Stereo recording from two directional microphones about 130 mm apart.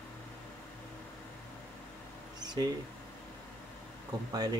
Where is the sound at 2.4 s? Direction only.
30° right (ahead or behind).